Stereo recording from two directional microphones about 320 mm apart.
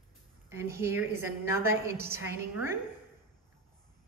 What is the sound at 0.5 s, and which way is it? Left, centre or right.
A woman's voice, centre.